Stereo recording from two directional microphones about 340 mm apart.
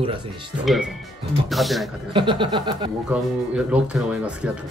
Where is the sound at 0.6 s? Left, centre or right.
Centre.